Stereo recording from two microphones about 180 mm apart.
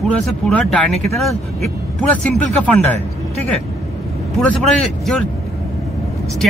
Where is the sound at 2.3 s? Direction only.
10° left (ahead or behind).